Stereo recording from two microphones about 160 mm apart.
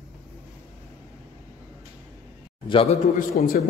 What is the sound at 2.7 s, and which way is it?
Speech, 35° left (ahead or behind).